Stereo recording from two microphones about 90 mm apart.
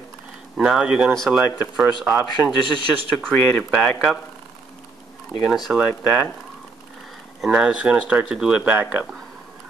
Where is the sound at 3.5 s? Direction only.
5° left (ahead or behind).